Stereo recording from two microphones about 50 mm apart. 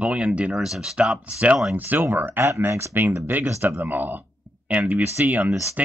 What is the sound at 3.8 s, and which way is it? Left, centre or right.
Speech, right.